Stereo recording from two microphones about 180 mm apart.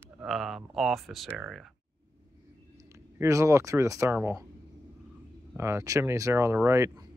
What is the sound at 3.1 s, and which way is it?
Speech, 15° right (ahead or behind).